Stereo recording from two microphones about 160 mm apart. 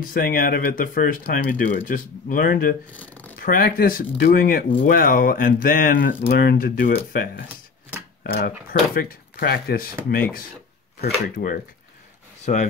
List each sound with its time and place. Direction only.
0.0 s speech: 60° left (ahead or behind)
2.9 s shuffling cards: 10° left (ahead or behind)
3.3 s speech: 65° left (ahead or behind)
11.0 s speech: 75° left (ahead or behind)
12.5 s speech: 55° left (ahead or behind)